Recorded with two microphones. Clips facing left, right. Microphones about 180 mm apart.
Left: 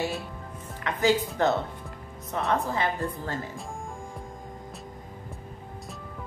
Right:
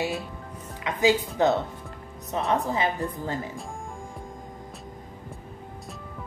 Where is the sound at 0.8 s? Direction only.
15° right (ahead or behind).